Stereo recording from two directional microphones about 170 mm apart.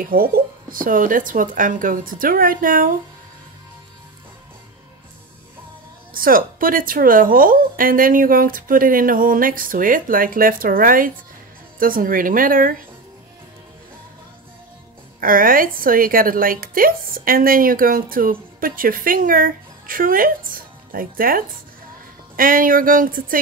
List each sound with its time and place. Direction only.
0.0 s speech: 60° right (ahead or behind)
6.1 s a woman's voice: 55° right (ahead or behind)
15.1 s a woman's voice: 55° right (ahead or behind)